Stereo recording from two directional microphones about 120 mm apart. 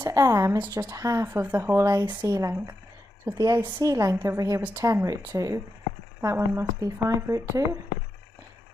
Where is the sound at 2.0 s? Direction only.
40° right (ahead or behind).